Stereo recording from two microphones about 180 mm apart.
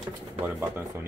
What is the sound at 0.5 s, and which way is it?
Speech, 15° right (ahead or behind).